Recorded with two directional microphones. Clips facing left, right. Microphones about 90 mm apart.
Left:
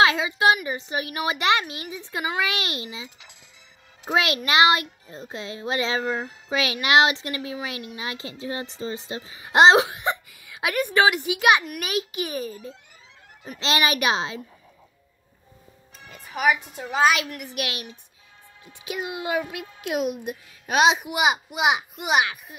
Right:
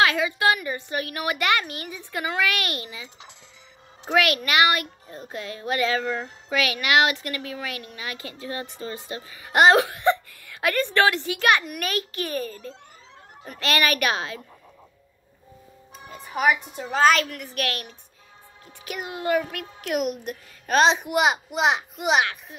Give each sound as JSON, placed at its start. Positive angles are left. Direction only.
{"t": 0.0, "sound": "a woman's voice", "side_deg": 20}
{"t": 4.1, "sound": "a woman's voice", "side_deg": 25}
{"t": 16.3, "sound": "a woman's voice", "side_deg": 5}
{"t": 18.9, "sound": "a child's voice", "side_deg": 15}